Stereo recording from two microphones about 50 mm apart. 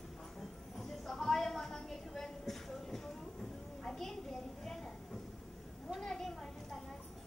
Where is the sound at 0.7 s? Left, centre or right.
Centre.